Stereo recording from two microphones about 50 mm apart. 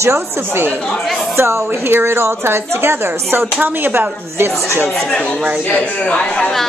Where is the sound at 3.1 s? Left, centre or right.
Right.